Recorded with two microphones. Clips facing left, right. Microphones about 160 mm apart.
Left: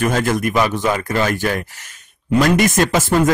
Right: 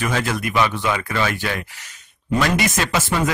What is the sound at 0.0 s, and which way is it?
Speech, 45° left (ahead or behind).